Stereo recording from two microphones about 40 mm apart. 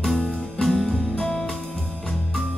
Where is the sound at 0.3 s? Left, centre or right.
Centre.